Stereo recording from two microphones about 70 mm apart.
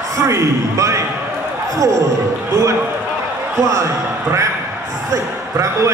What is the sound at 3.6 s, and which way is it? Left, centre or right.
Speech, right.